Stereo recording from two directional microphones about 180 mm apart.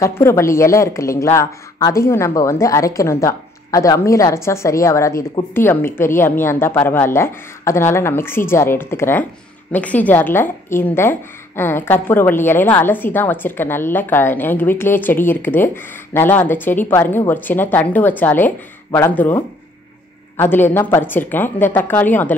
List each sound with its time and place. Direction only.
0.0 s speech: 15° left (ahead or behind)